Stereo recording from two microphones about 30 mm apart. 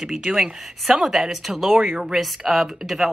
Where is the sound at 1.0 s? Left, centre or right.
Centre.